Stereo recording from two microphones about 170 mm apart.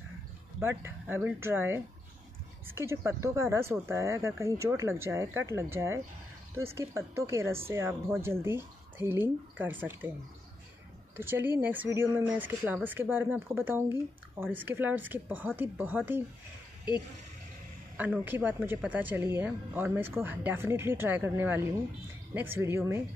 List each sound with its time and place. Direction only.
0.6 s speech: 15° right (ahead or behind)
11.1 s speech: 15° right (ahead or behind)
17.9 s speech: 10° right (ahead or behind)